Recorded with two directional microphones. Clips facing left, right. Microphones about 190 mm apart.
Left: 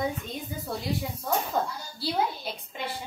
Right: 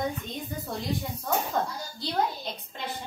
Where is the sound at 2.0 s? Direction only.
5° left (ahead or behind).